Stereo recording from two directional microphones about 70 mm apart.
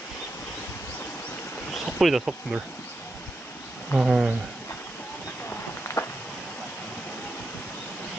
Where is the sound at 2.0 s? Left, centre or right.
Centre.